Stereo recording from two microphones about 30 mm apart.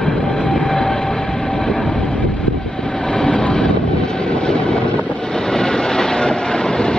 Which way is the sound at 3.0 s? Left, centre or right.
Left.